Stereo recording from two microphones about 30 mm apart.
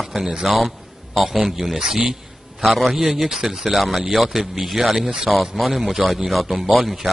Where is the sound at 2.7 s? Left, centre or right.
Centre.